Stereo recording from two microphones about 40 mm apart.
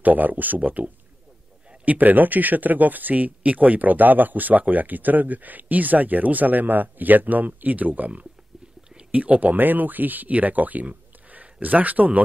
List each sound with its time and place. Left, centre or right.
0.0 s speech: right
9.1 s speech: right